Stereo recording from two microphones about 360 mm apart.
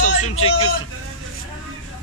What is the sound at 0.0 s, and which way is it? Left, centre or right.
Speech, centre.